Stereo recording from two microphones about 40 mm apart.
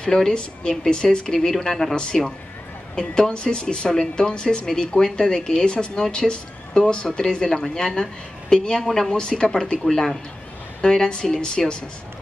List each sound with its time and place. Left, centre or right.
0.0 s a woman's voice: centre